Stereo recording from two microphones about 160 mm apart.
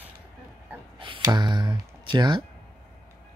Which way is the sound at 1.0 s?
30° right (ahead or behind).